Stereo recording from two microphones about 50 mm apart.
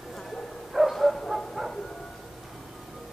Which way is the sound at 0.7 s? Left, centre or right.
Centre.